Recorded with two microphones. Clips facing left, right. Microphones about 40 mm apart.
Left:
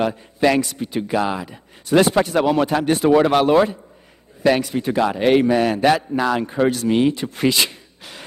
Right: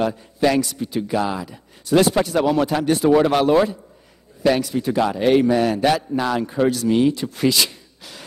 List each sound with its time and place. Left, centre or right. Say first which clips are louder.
0.0 s speech: left 1 dB; left